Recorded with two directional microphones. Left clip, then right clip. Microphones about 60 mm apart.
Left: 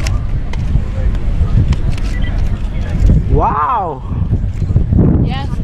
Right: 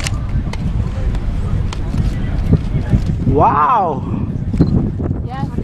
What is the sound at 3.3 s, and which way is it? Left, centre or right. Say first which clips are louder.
Speech: right 2 dB; right.